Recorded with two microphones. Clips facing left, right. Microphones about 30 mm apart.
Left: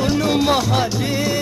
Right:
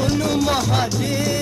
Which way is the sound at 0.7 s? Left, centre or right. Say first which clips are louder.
Left 1 dB; centre.